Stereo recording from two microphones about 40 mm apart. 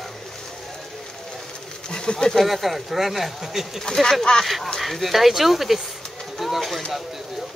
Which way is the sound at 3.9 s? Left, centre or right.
Centre.